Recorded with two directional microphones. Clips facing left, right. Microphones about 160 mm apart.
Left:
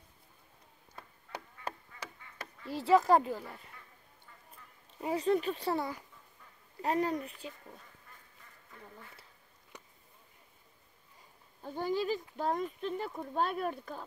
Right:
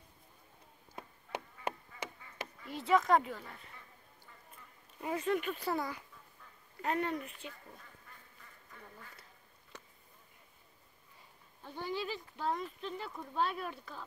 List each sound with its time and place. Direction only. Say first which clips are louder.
0.9 s insect: right 3 dB; 20° right (ahead or behind)
2.6 s speech: left 4 dB; 30° left (ahead or behind)
5.0 s speech: left 4 dB; 30° left (ahead or behind)
9.7 s a sound: even; 15° left (ahead or behind)
11.6 s speech: left 6 dB; 45° left (ahead or behind)